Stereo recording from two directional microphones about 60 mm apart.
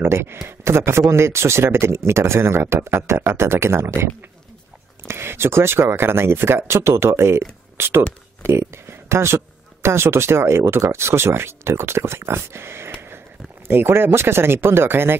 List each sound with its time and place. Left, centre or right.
0.0 s speech: right